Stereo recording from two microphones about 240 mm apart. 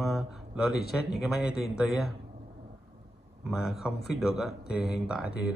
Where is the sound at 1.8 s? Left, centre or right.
Centre.